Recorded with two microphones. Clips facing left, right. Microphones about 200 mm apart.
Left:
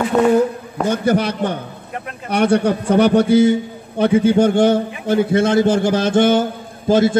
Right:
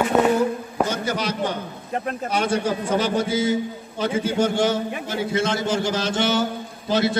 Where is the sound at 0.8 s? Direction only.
55° left (ahead or behind).